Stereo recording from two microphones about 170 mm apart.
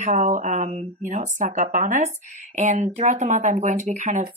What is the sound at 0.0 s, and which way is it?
Speech, 45° right (ahead or behind).